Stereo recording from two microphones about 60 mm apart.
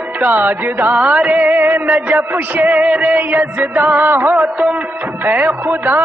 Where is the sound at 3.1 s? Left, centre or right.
Right.